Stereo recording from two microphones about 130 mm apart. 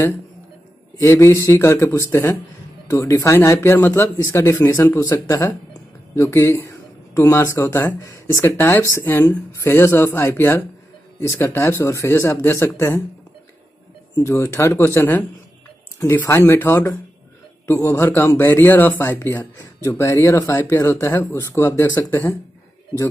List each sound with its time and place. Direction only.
1.0 s speech: 20° left (ahead or behind)
14.1 s a man's voice: 20° left (ahead or behind)
21.8 s speech: 30° left (ahead or behind)